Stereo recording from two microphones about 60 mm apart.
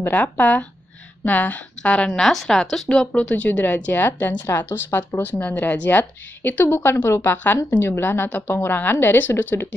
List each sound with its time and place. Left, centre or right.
0.1 s a woman's voice: left
2.1 s speech: centre
2.9 s a woman's voice: centre; by 4.4 s left
4.5 s a woman's voice: left